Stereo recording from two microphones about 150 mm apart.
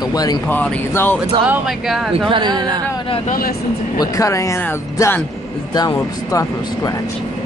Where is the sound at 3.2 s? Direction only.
70° left (ahead or behind).